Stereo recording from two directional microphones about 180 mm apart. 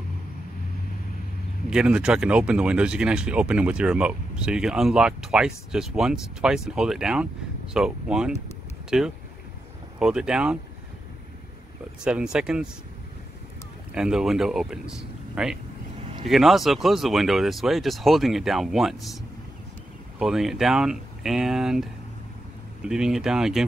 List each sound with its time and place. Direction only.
1.7 s speech: 5° right (ahead or behind)
12.0 s speech: 5° right (ahead or behind)
13.9 s speech: 5° right (ahead or behind)
20.2 s speech: centre (ahead or behind)